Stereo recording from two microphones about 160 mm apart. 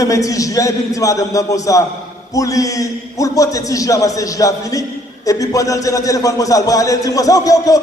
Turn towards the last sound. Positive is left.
turn(degrees=20)  # may be behind; listen again after turning